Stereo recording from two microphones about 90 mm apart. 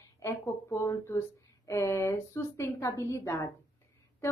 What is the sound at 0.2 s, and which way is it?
A woman's voice, 30° left (ahead or behind).